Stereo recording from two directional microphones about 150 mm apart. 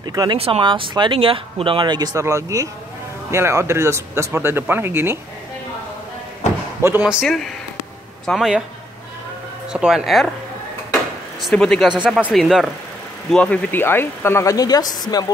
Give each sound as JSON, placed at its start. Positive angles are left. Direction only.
{"t": 0.0, "sound": "speech", "side_deg": -25}
{"t": 6.8, "sound": "speech", "side_deg": -10}
{"t": 9.7, "sound": "speech", "side_deg": -5}
{"t": 11.4, "sound": "speech", "side_deg": 5}
{"t": 12.0, "sound": "speech", "side_deg": -5}